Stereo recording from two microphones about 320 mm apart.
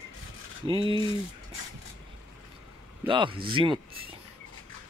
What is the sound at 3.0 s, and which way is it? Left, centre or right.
Speech, centre.